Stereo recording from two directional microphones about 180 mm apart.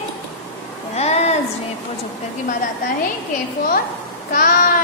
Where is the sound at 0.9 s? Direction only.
35° left (ahead or behind).